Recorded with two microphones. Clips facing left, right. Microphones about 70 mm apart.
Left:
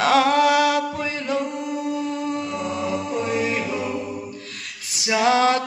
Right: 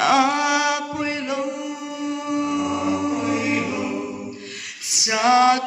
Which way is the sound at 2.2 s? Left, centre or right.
Centre.